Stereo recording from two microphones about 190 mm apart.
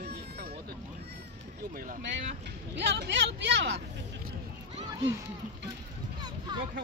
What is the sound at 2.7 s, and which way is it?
Speech, 70° right (ahead or behind).